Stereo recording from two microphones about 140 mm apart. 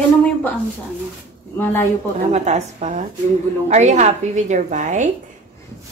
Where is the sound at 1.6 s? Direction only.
15° left (ahead or behind).